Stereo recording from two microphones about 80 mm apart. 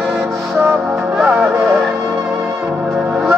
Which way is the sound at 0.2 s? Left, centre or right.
Right.